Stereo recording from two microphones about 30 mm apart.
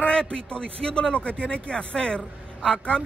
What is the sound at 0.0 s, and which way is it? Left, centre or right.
A man's voice, left.